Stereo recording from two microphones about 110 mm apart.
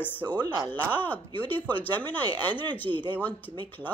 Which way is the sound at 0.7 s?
15° left (ahead or behind).